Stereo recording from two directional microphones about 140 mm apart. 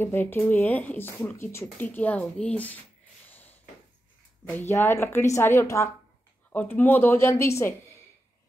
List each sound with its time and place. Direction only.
0.0 s speech: 15° left (ahead or behind)
3.3 s a sound: 15° left (ahead or behind)
4.5 s speech: 15° left (ahead or behind)